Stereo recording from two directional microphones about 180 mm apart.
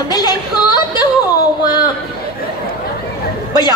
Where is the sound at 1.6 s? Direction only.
25° left (ahead or behind).